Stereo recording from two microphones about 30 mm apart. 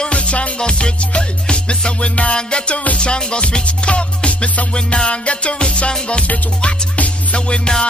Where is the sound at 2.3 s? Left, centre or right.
Left.